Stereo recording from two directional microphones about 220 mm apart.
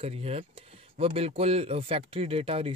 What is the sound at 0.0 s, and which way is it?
Speech, 25° right (ahead or behind).